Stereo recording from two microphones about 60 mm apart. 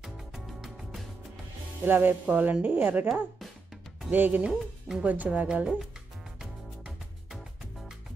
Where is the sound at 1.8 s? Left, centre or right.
Right.